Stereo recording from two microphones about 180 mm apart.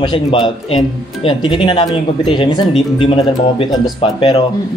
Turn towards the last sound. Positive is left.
turn(degrees=30)  # may be behind; listen again after turning